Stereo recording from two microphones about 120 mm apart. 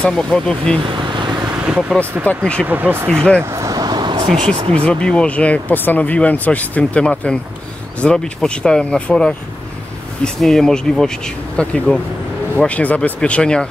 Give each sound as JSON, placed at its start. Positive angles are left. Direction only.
{"t": 0.0, "sound": "speech", "side_deg": 5}
{"t": 0.8, "sound": "vehicle", "side_deg": -40}
{"t": 1.7, "sound": "speech", "side_deg": -5}
{"t": 2.2, "sound": "speech", "side_deg": 10}
{"t": 2.6, "sound": "speech", "side_deg": -15}
{"t": 3.1, "sound": "speech", "side_deg": 5}
{"t": 3.3, "sound": "vehicle", "side_deg": -25}
{"t": 4.8, "sound": "speech", "side_deg": 10}